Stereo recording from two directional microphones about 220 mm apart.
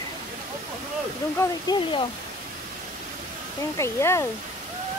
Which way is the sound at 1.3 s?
20° left (ahead or behind).